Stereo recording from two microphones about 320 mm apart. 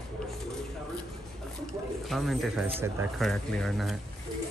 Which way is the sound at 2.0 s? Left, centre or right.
Centre.